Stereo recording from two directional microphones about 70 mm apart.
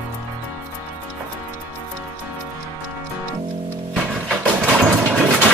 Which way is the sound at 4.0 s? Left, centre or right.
Centre.